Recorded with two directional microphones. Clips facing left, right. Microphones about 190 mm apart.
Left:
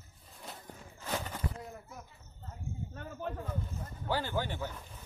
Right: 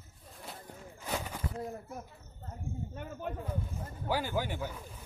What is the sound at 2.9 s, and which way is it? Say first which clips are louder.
Speech: left 2 dB; 15° right (ahead or behind).